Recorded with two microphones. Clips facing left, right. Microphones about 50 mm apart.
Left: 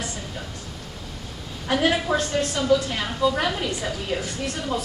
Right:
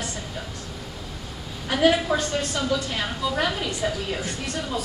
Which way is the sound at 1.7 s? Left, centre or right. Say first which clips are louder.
Right 1 dB; centre.